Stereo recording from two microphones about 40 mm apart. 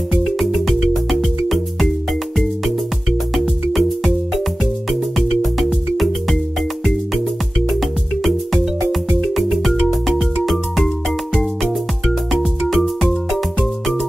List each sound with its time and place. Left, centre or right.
0.1 s music: centre
3.3 s music: centre
5.4 s music: centre
9.2 s music: centre
12.3 s music: centre